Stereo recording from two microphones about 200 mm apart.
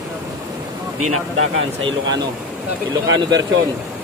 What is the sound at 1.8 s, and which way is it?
Speech, 20° right (ahead or behind).